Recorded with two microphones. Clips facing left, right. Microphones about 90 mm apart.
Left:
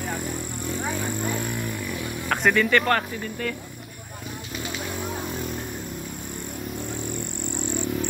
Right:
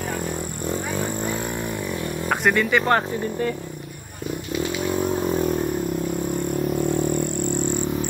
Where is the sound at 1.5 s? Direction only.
20° right (ahead or behind).